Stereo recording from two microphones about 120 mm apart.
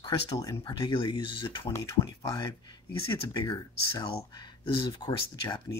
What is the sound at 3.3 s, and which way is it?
Speech, 35° left (ahead or behind).